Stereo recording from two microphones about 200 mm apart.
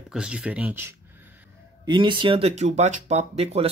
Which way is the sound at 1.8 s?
25° right (ahead or behind).